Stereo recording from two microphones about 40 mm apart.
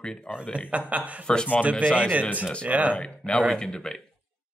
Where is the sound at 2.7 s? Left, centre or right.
Right.